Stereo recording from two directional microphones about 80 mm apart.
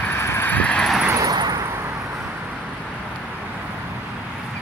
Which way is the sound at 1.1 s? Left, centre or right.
Right.